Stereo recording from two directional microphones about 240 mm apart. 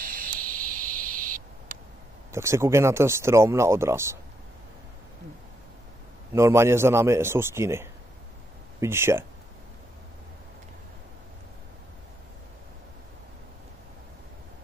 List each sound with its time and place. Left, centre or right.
0.0 s owl: right
2.3 s speech: centre
6.3 s speech: centre